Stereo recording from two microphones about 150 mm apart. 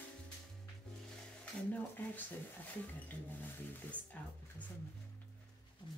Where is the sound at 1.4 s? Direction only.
10° left (ahead or behind).